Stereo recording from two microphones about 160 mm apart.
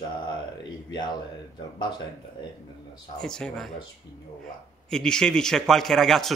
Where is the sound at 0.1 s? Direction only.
30° left (ahead or behind).